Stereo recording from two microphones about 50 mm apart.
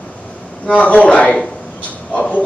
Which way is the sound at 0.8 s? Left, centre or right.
Left.